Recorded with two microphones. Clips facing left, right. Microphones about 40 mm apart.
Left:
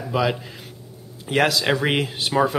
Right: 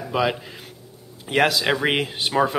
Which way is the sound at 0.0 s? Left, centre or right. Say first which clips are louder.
Even; centre.